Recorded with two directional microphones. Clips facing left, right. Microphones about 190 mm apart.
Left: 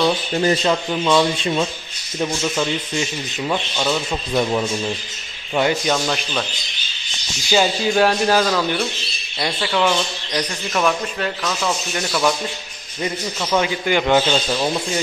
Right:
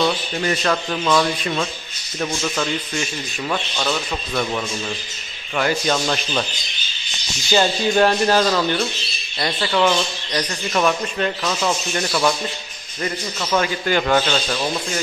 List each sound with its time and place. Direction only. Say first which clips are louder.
0.4 s a man's voice: left 3 dB; 25° left (ahead or behind)
0.8 s speech: left 2 dB; 15° left (ahead or behind)
4.3 s a man's voice: left 5 dB; 25° left (ahead or behind)
5.9 s speech: even; centre (ahead or behind)
7.5 s speech: even; 5° left (ahead or behind)
13.0 s speech: left 1 dB; 10° left (ahead or behind)